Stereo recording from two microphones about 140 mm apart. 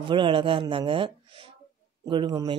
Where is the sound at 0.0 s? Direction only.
35° right (ahead or behind).